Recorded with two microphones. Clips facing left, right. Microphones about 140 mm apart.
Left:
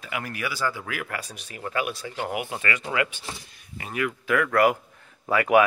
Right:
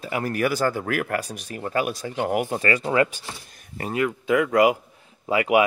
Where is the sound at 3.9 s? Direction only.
25° right (ahead or behind).